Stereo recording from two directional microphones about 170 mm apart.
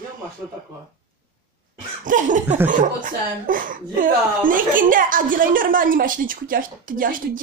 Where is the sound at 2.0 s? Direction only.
50° right (ahead or behind).